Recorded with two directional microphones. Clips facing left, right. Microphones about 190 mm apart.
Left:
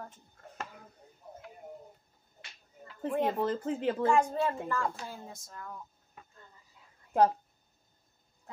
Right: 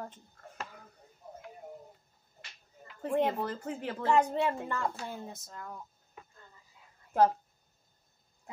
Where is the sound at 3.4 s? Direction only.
20° left (ahead or behind).